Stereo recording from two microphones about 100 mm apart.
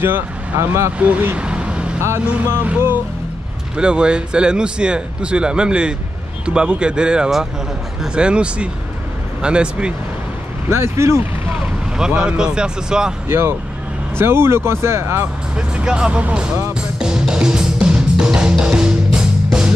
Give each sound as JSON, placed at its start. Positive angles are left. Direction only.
{"t": 0.0, "sound": "speech", "side_deg": -20}
{"t": 0.9, "sound": "vehicle", "side_deg": -15}
{"t": 2.0, "sound": "a man's voice", "side_deg": -20}
{"t": 10.7, "sound": "speech", "side_deg": -25}
{"t": 11.6, "sound": "speech", "side_deg": -10}
{"t": 13.3, "sound": "speech", "side_deg": -25}
{"t": 15.5, "sound": "a man's voice", "side_deg": -10}
{"t": 17.0, "sound": "music", "side_deg": -5}